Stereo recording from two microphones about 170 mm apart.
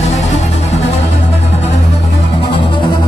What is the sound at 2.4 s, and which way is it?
Music, 30° left (ahead or behind).